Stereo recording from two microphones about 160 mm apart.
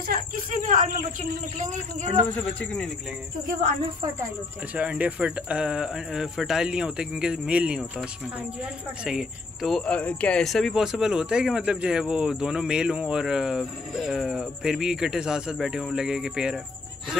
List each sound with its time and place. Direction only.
0.7 s a sound: 55° right (ahead or behind)
1.6 s speech: 50° right (ahead or behind)
2.1 s speech: 10° left (ahead or behind)
4.7 s speech: 10° right (ahead or behind)